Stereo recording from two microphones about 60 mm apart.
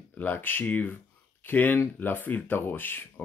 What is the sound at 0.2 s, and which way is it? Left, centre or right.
Speech, left.